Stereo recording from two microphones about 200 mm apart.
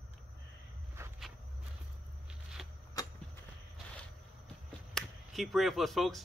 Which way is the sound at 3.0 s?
20° left (ahead or behind).